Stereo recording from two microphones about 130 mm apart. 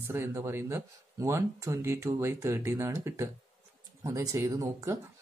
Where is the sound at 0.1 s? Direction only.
20° right (ahead or behind).